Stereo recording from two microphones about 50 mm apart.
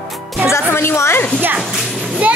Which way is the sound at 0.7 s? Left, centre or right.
Left.